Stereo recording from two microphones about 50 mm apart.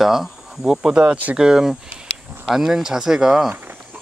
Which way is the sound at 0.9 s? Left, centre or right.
Right.